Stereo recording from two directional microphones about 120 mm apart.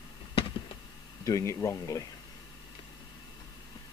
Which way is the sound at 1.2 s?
25° left (ahead or behind).